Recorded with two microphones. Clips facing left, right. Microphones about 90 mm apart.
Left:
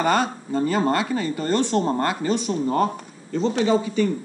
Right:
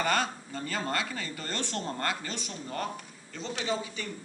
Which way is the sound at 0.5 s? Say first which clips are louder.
Left 13 dB; 25° left (ahead or behind).